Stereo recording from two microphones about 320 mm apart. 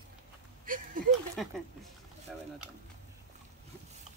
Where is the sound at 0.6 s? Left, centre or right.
Right.